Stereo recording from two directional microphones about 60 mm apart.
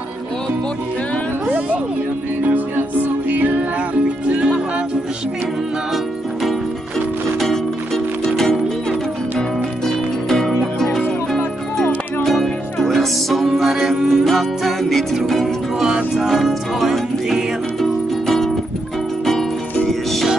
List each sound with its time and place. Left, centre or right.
2.4 s music: right
7.3 s music: centre
9.8 s music: centre
12.2 s music: centre
18.2 s music: centre
19.9 s music: centre